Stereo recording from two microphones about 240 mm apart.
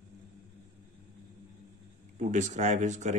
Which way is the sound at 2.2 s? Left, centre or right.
Right.